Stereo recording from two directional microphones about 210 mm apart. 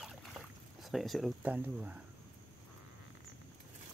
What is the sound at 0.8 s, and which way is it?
Speech, centre (ahead or behind).